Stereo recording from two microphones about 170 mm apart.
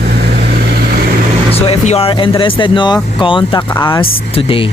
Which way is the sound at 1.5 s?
35° left (ahead or behind).